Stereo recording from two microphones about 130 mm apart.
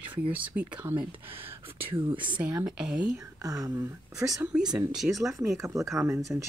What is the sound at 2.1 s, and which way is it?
Speech, 40° right (ahead or behind).